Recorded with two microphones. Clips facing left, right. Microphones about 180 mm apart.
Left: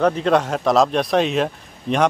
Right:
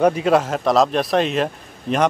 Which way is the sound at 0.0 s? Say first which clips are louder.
Right 1 dB; 10° right (ahead or behind).